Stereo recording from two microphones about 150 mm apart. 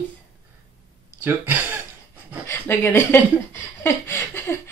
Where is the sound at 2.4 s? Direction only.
15° left (ahead or behind).